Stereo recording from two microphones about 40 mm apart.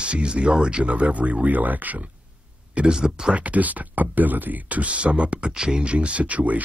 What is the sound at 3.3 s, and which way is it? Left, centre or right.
Speech, right.